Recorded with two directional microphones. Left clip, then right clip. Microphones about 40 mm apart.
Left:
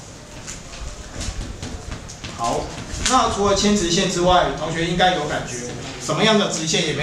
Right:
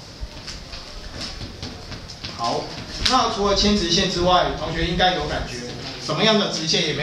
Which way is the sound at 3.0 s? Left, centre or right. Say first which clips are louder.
Left 1 dB; right.